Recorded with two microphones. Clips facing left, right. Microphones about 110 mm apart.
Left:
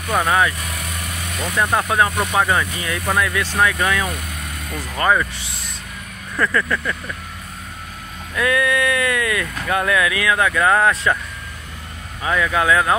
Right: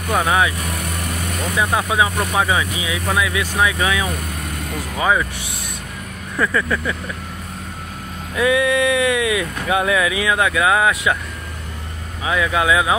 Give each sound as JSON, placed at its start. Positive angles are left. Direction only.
{"t": 0.1, "sound": "speech", "side_deg": -10}
{"t": 6.3, "sound": "speech", "side_deg": -10}
{"t": 8.4, "sound": "speech", "side_deg": -20}
{"t": 12.3, "sound": "speech", "side_deg": -10}